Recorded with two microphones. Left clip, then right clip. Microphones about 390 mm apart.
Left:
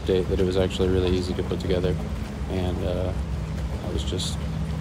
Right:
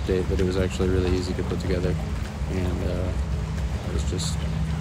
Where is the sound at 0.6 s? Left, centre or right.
Left.